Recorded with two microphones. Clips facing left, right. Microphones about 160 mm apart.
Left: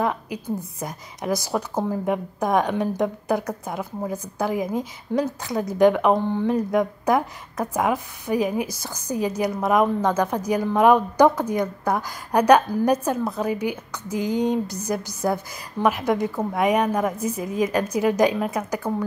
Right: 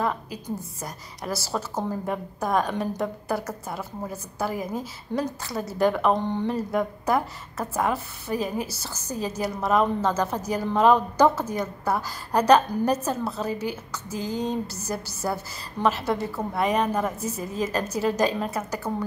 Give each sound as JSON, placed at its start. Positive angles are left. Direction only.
{"t": 0.0, "sound": "a woman's voice", "side_deg": 15}